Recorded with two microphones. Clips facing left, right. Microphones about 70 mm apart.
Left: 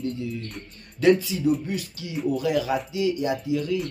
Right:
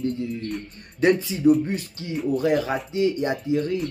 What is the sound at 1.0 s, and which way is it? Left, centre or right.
Speech, right.